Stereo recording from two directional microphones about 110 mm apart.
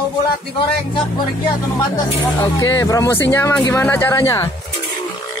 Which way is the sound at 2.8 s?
30° left (ahead or behind).